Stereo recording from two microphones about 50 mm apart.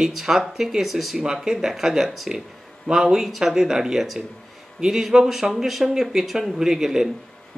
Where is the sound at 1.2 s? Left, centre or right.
Centre.